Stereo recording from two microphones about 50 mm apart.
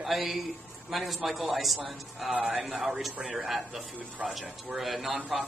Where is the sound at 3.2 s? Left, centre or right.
Centre.